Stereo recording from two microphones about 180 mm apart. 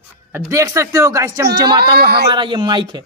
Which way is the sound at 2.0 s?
60° right (ahead or behind).